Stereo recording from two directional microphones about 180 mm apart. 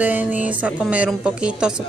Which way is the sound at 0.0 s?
10° right (ahead or behind).